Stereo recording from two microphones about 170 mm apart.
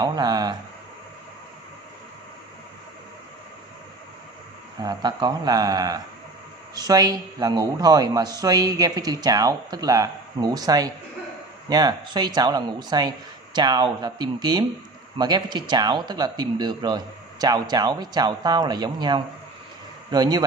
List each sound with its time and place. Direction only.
0.0 s a man's voice: 25° right (ahead or behind)
4.8 s a man's voice: 25° right (ahead or behind)